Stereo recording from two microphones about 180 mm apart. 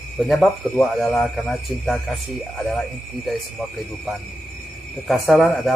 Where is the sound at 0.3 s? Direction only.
Centre (ahead or behind).